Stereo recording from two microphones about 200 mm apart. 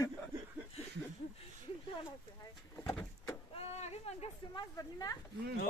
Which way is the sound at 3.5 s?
30° left (ahead or behind).